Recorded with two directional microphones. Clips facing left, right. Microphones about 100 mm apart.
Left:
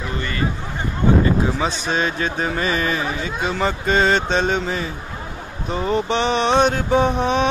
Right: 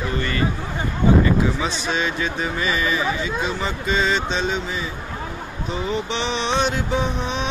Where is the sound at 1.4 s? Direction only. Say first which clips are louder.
Left 1 dB; 35° left (ahead or behind).